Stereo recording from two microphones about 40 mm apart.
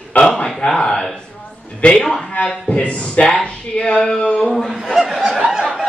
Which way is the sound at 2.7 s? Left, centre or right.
Left.